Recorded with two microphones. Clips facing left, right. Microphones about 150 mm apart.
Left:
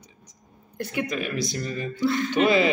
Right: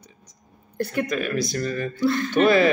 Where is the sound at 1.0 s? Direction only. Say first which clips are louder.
Right 3 dB; 20° left (ahead or behind).